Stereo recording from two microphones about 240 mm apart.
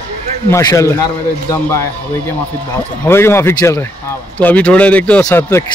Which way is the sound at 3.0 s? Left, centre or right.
Centre.